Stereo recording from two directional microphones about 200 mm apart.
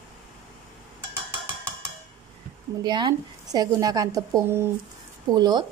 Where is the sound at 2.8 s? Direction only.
20° right (ahead or behind).